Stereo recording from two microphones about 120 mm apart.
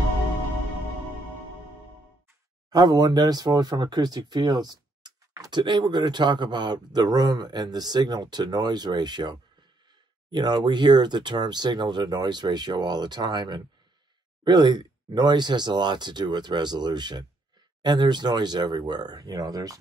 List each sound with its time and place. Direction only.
2.7 s speech: 35° right (ahead or behind)